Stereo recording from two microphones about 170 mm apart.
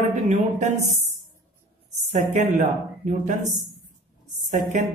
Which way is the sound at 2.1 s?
45° right (ahead or behind).